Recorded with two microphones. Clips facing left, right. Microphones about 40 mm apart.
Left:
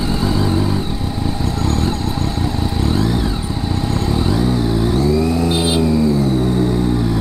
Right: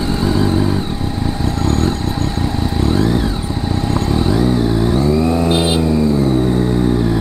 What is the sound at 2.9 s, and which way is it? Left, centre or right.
Vehicle, centre.